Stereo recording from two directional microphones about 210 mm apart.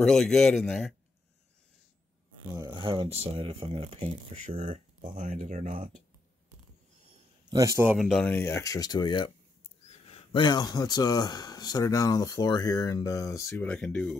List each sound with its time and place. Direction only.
0.0 s a man's voice: centre (ahead or behind)
2.5 s speech: 20° right (ahead or behind); by 6.0 s 35° right (ahead or behind)
7.4 s speech: 15° right (ahead or behind); by 14.1 s 5° left (ahead or behind)